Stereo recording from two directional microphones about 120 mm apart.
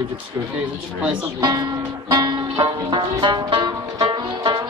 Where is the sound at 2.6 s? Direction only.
40° right (ahead or behind).